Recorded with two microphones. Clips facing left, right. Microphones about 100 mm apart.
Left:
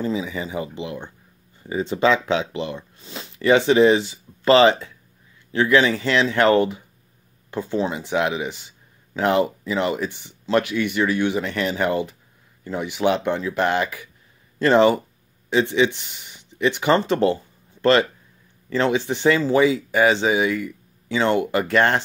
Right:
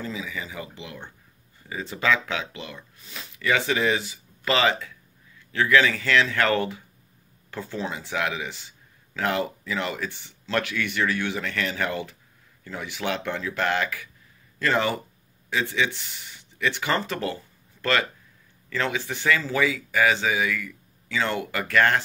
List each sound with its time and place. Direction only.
0.0 s speech: 30° left (ahead or behind)
18.7 s speech: 25° left (ahead or behind)